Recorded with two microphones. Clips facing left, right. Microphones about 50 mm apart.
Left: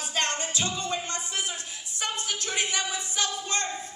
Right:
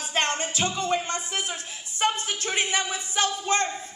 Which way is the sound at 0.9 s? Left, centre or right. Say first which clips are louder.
Right 5 dB; right.